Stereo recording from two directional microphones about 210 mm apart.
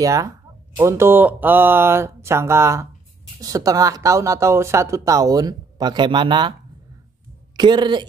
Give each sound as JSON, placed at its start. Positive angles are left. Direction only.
{"t": 0.0, "sound": "speech", "side_deg": -15}
{"t": 7.5, "sound": "speech", "side_deg": -20}